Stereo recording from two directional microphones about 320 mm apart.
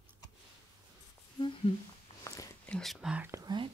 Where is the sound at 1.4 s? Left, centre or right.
Centre.